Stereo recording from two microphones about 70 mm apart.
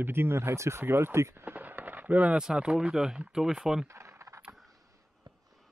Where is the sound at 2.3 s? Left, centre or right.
Centre.